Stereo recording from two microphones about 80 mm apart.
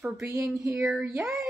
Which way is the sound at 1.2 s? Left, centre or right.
Centre.